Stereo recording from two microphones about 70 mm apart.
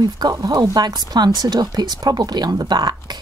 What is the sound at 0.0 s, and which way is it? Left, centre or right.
Speech, right.